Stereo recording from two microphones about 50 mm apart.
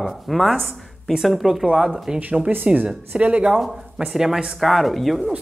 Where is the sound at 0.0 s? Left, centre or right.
Centre.